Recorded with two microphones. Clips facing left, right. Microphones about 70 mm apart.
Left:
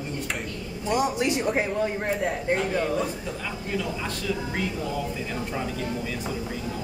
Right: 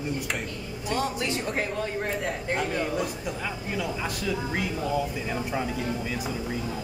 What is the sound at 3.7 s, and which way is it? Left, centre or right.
Speech, centre.